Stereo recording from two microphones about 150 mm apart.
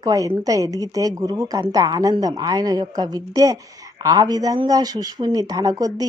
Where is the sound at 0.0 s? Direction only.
25° right (ahead or behind).